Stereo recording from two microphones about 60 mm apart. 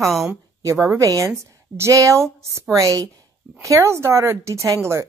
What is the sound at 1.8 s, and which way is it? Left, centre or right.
Speech, right.